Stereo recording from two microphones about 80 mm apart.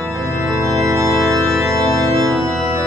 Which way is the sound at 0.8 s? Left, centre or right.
Right.